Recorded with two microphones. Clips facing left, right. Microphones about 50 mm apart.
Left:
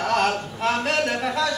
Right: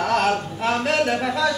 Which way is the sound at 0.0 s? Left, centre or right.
Centre.